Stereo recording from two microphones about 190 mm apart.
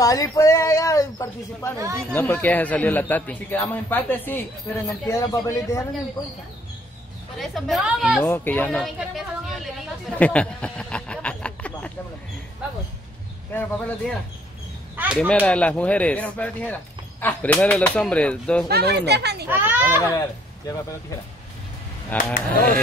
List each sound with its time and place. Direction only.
0.0 s a man's voice: 20° left (ahead or behind)
7.3 s a woman's voice: centre (ahead or behind)
8.2 s a man's voice: 10° left (ahead or behind)
13.5 s a man's voice: 10° left (ahead or behind)
18.7 s a child's voice: 60° right (ahead or behind)
19.5 s a child's voice: 10° right (ahead or behind)
20.2 s speech: 15° left (ahead or behind)
22.1 s speech: 50° left (ahead or behind)